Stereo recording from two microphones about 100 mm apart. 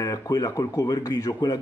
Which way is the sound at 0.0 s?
35° left (ahead or behind).